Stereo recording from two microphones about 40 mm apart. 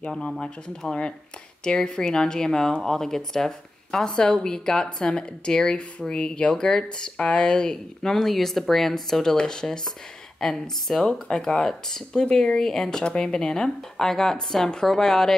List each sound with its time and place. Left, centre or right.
1.6 s speech: left